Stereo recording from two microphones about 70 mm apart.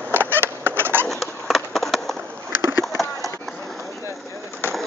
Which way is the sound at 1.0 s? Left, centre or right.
Centre.